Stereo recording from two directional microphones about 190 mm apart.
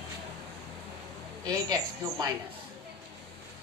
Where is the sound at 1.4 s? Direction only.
20° right (ahead or behind).